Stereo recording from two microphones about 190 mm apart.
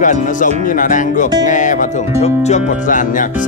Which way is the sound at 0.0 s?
40° left (ahead or behind).